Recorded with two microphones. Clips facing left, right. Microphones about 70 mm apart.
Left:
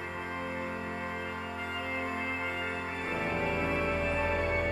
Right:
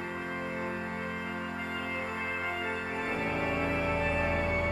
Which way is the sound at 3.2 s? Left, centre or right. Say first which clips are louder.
Left 1 dB; centre.